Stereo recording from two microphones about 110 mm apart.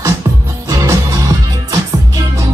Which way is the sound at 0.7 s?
25° right (ahead or behind).